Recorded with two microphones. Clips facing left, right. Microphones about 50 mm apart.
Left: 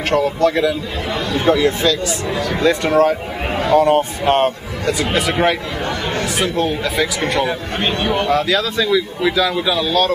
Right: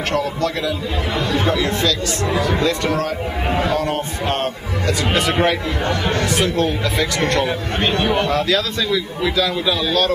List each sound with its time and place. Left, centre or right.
0.1 s speech: centre
1.1 s speech: centre
1.5 s speech: centre
2.2 s speech: centre
2.6 s speech: centre
4.8 s speech: centre